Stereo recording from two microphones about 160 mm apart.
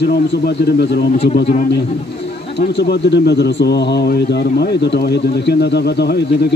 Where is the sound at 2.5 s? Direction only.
90° left.